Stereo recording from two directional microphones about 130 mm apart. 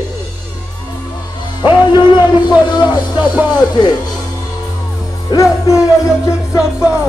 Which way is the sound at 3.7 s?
30° left (ahead or behind).